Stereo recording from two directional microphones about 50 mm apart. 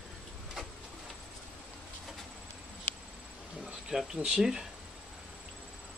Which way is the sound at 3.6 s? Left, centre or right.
Centre.